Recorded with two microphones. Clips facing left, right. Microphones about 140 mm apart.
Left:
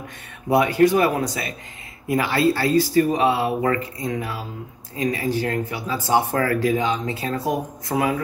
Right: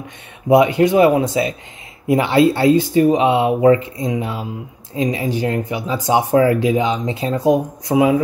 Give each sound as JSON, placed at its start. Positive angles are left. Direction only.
{"t": 0.5, "sound": "speech", "side_deg": -20}